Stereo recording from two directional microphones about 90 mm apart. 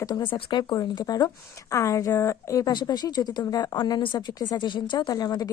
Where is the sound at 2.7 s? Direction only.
50° left (ahead or behind).